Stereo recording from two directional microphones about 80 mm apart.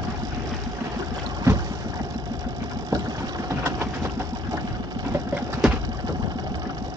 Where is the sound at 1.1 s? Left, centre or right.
Right.